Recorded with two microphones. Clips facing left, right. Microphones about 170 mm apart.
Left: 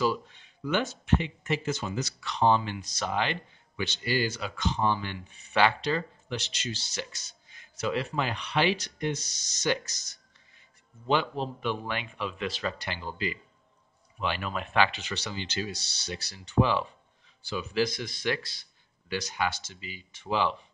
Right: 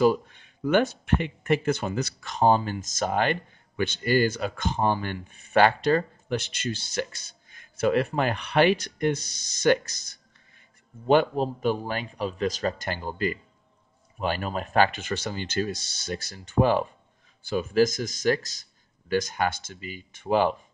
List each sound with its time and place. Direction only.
0.0 s speech: 50° right (ahead or behind)